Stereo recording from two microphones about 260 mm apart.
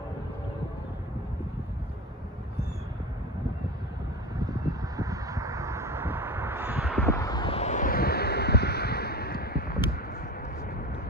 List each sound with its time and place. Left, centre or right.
4.5 s vehicle: centre
7.0 s vehicle: centre; by 9.7 s left